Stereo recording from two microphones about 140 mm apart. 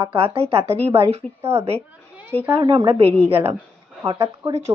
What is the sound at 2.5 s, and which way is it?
Speech, 35° right (ahead or behind).